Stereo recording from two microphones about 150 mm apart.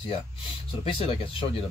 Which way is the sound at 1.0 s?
35° left (ahead or behind).